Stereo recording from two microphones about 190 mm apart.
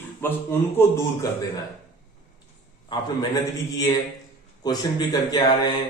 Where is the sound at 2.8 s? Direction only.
20° left (ahead or behind).